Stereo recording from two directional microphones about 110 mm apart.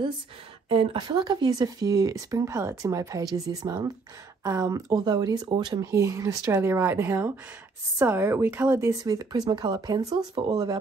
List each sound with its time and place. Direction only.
0.7 s speech: 50° right (ahead or behind)
5.9 s speech: 25° right (ahead or behind)
8.9 s speech: 35° right (ahead or behind)